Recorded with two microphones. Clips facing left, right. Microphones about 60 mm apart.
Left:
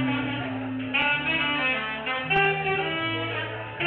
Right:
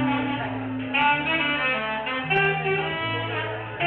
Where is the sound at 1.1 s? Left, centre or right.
Centre.